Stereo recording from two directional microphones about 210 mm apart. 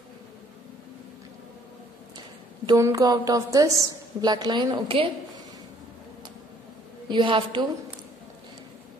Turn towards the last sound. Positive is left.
turn(degrees=-25)  # may be behind; listen again after turning